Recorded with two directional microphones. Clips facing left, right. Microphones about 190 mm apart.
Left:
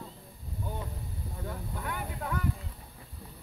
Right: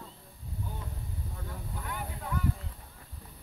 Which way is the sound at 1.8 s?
60° left (ahead or behind).